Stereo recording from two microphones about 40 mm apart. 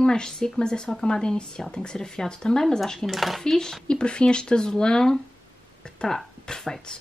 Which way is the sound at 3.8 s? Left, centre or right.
Left.